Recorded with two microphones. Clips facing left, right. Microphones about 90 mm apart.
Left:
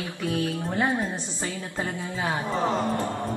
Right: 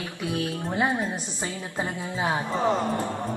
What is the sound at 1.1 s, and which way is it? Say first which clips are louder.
Speech: even; 20° right (ahead or behind).